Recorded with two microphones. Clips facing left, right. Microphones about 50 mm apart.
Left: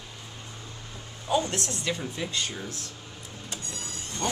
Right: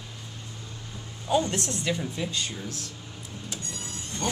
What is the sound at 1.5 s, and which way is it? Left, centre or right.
Speech, centre.